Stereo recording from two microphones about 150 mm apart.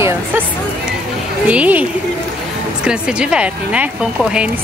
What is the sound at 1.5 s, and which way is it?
A woman's voice, 10° right (ahead or behind).